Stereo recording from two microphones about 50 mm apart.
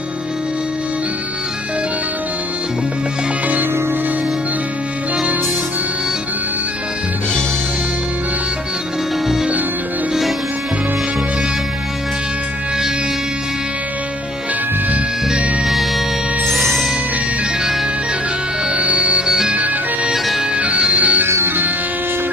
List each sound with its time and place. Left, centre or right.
5.1 s music: right
15.6 s music: centre
18.7 s music: right
20.5 s music: right
21.5 s music: right